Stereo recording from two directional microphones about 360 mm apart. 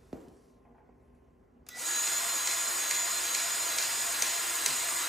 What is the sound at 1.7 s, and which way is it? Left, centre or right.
Drill, centre.